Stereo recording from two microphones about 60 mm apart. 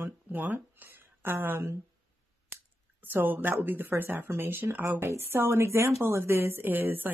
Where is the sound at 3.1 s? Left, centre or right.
Right.